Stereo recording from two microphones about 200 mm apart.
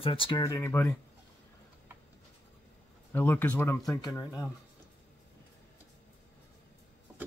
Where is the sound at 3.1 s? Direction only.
10° left (ahead or behind).